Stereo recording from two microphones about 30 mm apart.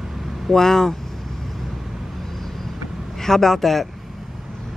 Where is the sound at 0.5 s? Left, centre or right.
Centre.